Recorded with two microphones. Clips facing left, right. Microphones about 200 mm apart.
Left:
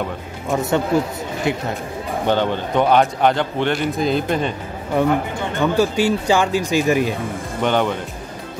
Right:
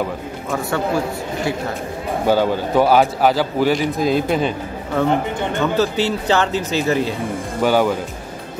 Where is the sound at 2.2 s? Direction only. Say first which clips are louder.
Right 3 dB; 5° right (ahead or behind).